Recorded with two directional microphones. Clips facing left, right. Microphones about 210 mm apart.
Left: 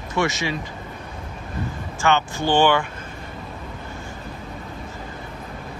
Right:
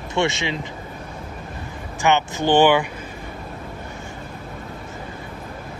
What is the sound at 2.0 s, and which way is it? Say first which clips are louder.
Speech: right 2 dB; 20° right (ahead or behind).